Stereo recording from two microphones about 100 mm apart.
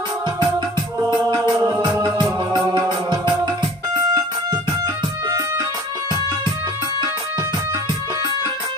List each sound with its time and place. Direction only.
1.6 s music: 45° right (ahead or behind)
4.1 s music: 40° right (ahead or behind)